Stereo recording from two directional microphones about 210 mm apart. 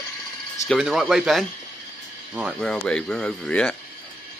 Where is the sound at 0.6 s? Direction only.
Centre (ahead or behind).